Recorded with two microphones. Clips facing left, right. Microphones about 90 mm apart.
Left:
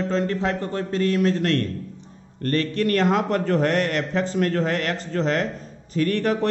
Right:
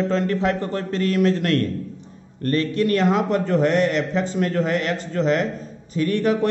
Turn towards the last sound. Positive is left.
turn(degrees=40)  # may be behind; listen again after turning